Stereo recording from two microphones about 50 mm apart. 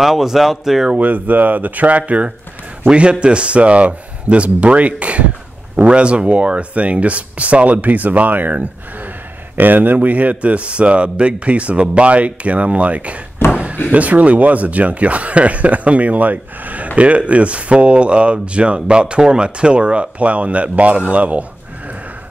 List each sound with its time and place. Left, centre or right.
0.0 s speech: centre
0.9 s speech: right
13.4 s a sound: left
13.9 s speech: right